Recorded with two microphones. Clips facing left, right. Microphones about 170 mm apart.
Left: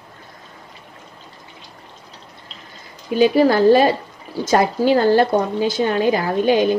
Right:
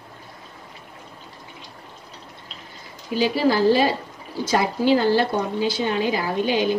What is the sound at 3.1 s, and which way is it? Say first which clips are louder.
A woman's voice: left 6 dB; 55° left (ahead or behind).